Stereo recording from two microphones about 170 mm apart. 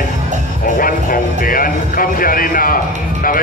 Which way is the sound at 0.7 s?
55° left (ahead or behind).